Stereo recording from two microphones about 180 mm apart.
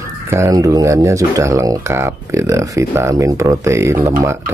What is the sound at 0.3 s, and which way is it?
Speech, 15° right (ahead or behind).